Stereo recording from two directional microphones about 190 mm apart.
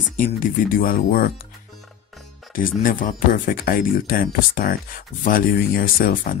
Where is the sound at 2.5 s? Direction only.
45° left (ahead or behind).